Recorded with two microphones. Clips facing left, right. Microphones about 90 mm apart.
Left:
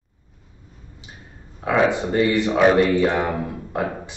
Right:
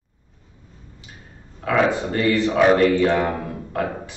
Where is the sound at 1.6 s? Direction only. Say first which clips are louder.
Even; 20° left (ahead or behind).